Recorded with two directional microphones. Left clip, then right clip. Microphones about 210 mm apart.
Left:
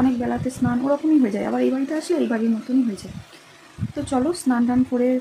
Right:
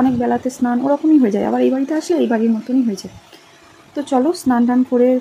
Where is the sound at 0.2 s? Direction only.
10° right (ahead or behind).